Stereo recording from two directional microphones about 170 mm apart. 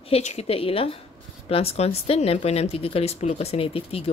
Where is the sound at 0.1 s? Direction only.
40° left (ahead or behind).